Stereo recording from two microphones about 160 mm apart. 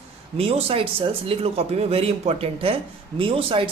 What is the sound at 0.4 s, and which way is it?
Speech, 35° right (ahead or behind).